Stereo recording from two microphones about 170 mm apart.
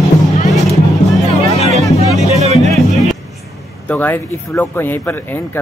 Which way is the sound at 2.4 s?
40° right (ahead or behind).